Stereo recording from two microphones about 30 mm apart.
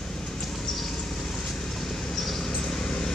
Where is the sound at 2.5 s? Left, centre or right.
Left.